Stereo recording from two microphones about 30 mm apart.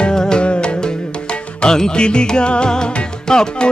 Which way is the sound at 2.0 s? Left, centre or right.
Left.